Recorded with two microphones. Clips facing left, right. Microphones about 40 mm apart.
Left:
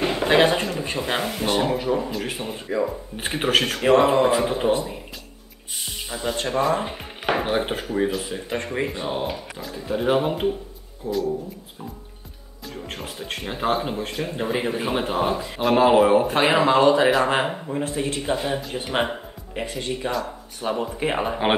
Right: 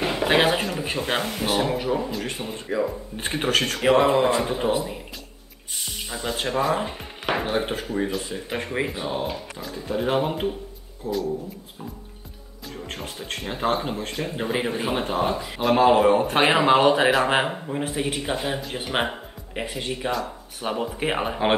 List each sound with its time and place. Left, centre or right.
0.0 s speech: centre
6.0 s speech: centre
6.8 s speech: centre
8.5 s speech: centre
12.7 s speech: centre
16.6 s a man's voice: centre
18.9 s music: centre
19.7 s a man's voice: centre